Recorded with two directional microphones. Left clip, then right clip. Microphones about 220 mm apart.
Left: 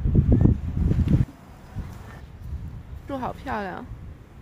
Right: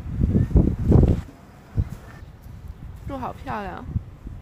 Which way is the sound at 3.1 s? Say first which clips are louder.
Left 1 dB; 10° left (ahead or behind).